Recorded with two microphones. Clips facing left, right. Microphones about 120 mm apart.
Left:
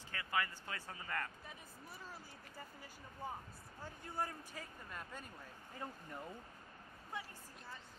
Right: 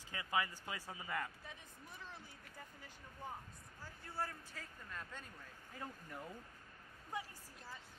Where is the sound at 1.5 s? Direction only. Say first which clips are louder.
Left 1 dB; 5° left (ahead or behind).